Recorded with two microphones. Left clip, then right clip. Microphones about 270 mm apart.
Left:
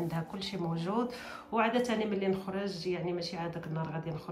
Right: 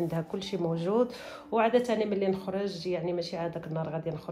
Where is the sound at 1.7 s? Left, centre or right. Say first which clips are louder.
Right 5 dB; centre.